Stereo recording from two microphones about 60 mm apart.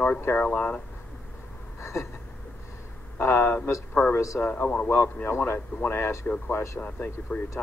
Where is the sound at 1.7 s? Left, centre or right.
Left.